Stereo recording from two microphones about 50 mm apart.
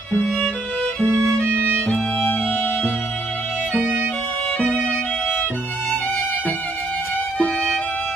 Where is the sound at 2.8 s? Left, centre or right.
Left.